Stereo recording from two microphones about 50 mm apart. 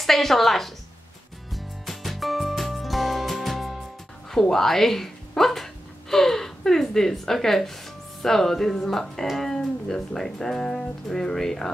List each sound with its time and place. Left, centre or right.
0.0 s a woman's voice: centre
1.5 s music: centre
4.3 s dog: centre
8.2 s speech: centre